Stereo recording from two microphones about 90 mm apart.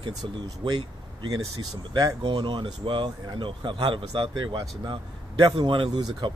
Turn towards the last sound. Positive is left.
turn(degrees=-60)  # may be behind; listen again after turning